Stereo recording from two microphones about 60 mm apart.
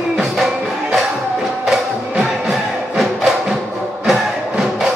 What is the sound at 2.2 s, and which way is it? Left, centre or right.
Music, centre.